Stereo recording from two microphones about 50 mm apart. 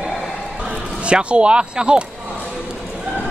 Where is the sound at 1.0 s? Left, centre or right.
Right.